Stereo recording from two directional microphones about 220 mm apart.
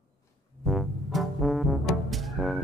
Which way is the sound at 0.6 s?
Centre (ahead or behind).